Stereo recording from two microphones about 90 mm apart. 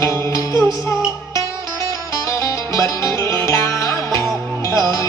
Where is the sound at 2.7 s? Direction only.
35° left (ahead or behind).